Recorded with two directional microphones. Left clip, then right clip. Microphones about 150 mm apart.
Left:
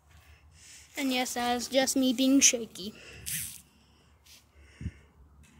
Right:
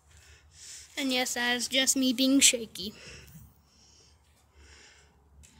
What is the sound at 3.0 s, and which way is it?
Speech, 20° right (ahead or behind).